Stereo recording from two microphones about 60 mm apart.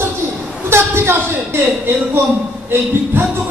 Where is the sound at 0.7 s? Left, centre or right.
Right.